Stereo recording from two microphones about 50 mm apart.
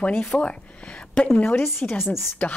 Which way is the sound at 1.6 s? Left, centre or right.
Left.